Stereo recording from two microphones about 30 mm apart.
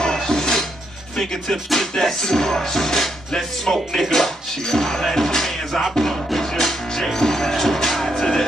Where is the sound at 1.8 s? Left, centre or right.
Centre.